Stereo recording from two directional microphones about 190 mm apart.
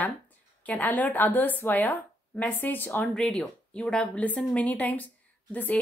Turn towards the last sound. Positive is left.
turn(degrees=10)  # may be behind; listen again after turning